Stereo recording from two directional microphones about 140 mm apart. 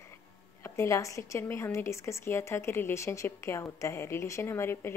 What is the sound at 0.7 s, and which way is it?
A woman's voice, 20° left (ahead or behind).